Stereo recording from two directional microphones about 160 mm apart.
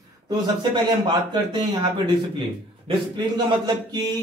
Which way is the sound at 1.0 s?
25° right (ahead or behind).